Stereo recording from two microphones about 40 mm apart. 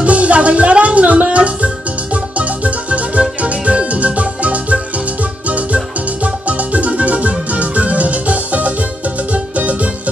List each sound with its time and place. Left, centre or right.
0.0 s music: right
6.2 s music: right